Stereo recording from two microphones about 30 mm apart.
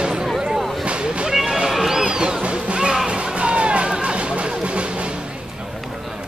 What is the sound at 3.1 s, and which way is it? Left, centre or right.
Music, right.